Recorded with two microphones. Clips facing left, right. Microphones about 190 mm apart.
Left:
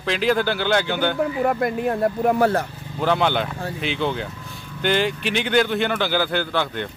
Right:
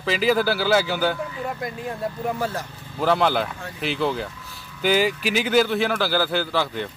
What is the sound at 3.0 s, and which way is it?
Speech, centre (ahead or behind).